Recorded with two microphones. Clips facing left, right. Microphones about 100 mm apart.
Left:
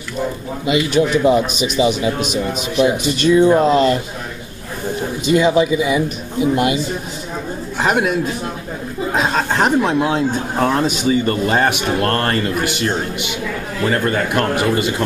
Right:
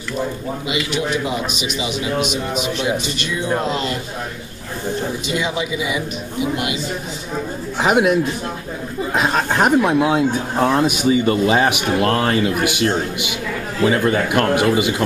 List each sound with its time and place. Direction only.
0.7 s a man's voice: 40° left (ahead or behind)
2.5 s a man's voice: 5° left (ahead or behind)
3.2 s speech: 45° left (ahead or behind)
5.2 s a man's voice: 40° left (ahead or behind)
7.8 s a man's voice: 5° right (ahead or behind)